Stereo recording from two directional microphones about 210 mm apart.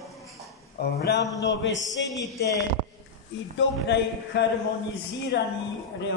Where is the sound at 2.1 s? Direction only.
15° left (ahead or behind).